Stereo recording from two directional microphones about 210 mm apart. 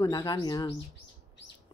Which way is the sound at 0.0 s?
20° left (ahead or behind).